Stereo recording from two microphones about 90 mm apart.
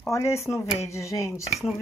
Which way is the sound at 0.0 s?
30° left (ahead or behind).